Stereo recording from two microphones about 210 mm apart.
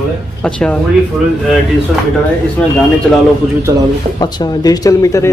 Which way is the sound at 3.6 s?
15° right (ahead or behind).